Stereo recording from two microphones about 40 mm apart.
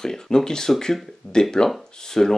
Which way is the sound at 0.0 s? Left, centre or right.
Centre.